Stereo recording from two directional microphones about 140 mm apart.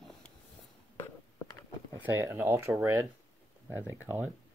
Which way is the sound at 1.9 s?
15° right (ahead or behind).